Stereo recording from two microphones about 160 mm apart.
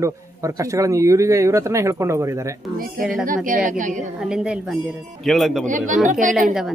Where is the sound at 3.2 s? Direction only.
60° right (ahead or behind).